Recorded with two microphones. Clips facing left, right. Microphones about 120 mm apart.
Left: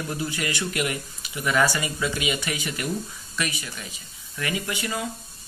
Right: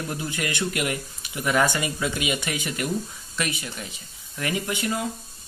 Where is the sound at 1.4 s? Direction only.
20° right (ahead or behind).